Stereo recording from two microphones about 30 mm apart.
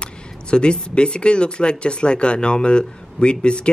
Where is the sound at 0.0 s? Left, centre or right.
Left.